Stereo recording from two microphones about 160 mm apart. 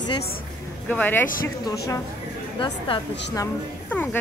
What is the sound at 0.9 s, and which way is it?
Speech, 10° left (ahead or behind).